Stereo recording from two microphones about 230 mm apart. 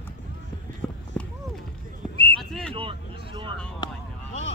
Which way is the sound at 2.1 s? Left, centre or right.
Right.